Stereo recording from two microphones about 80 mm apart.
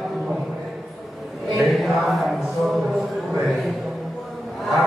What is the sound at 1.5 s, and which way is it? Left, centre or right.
A man's voice, centre.